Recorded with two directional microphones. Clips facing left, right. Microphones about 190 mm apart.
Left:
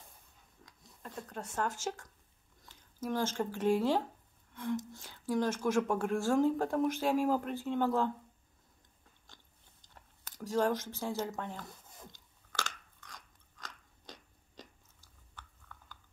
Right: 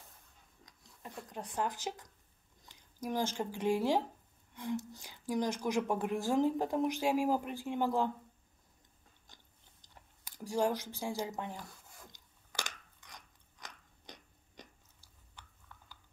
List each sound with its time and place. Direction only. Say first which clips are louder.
0.7 s speech: left 1 dB; 15° right (ahead or behind)
10.2 s speech: left 1 dB; 15° right (ahead or behind)
12.1 s chewing: left 2 dB; 15° right (ahead or behind)